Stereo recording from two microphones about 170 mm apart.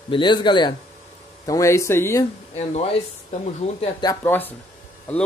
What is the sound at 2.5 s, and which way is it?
Speech, 40° left (ahead or behind).